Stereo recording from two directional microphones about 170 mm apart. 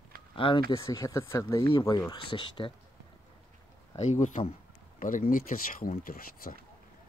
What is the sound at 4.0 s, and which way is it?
Speech, 45° left (ahead or behind).